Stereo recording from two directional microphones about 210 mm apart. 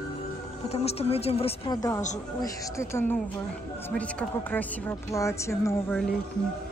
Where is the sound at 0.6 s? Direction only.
30° left (ahead or behind); by 5.9 s 15° left (ahead or behind).